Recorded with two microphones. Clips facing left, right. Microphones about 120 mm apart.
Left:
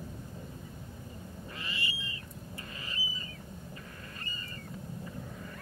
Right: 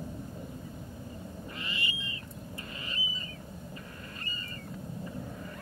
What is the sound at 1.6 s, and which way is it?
Owl, 20° right (ahead or behind).